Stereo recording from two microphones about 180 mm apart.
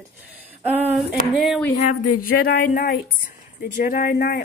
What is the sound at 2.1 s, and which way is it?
A woman's voice, 50° left (ahead or behind).